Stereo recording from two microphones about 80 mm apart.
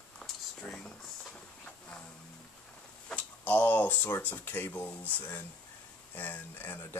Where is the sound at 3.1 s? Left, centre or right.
Centre.